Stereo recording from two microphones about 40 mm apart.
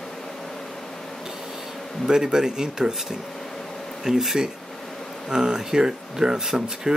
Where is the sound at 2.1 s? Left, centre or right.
Centre.